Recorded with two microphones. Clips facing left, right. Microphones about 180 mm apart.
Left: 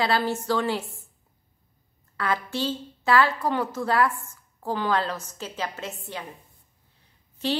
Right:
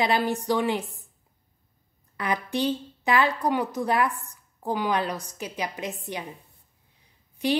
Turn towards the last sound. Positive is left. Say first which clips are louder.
# right 2 dB
turn(degrees=-15)  # may be behind; listen again after turning